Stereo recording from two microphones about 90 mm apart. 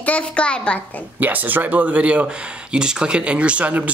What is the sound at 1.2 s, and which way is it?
Speech, 20° right (ahead or behind).